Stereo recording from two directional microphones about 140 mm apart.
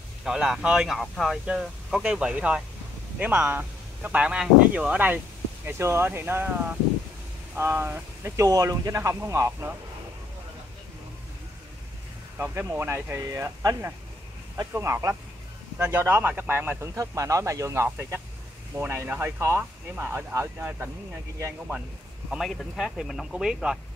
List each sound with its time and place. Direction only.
0.2 s speech: 5° right (ahead or behind); by 9.8 s 20° right (ahead or behind)
12.4 s speech: 15° right (ahead or behind)
22.3 s speech: centre (ahead or behind)